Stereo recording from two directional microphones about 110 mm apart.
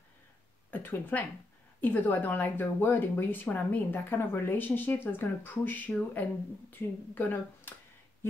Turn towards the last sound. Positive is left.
turn(degrees=15)  # may be behind; listen again after turning